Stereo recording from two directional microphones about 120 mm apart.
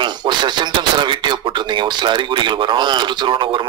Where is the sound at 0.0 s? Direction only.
40° right (ahead or behind).